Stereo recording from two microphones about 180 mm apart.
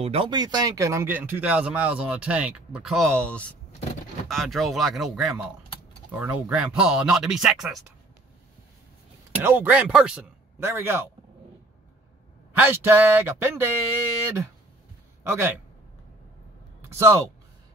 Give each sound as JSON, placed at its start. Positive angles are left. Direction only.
{"t": 0.0, "sound": "speech", "side_deg": -30}
{"t": 9.4, "sound": "speech", "side_deg": -10}
{"t": 12.6, "sound": "speech", "side_deg": -10}
{"t": 15.2, "sound": "speech", "side_deg": -15}
{"t": 16.8, "sound": "a sound", "side_deg": -15}